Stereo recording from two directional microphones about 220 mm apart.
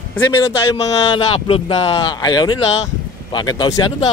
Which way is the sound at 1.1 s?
25° left (ahead or behind).